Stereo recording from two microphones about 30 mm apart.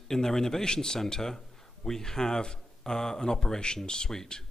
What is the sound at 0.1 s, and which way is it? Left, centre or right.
A man's voice, centre.